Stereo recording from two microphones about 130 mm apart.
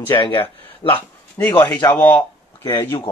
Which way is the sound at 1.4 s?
20° left (ahead or behind).